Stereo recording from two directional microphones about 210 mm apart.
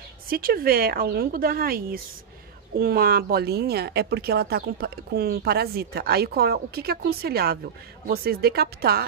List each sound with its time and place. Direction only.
0.3 s speech: 45° right (ahead or behind)